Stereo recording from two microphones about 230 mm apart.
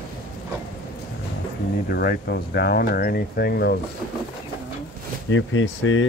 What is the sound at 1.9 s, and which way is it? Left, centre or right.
Speech, left.